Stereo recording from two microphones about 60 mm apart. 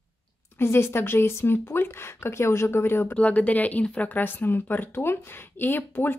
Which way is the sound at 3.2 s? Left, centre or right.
Left.